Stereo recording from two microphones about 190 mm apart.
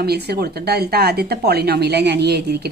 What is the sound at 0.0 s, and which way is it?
Speech, 55° right (ahead or behind).